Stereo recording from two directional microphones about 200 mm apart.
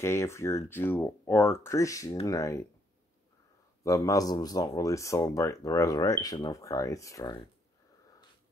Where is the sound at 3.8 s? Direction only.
15° left (ahead or behind).